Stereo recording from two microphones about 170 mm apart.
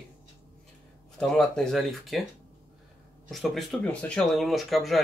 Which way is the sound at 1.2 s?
5° left (ahead or behind).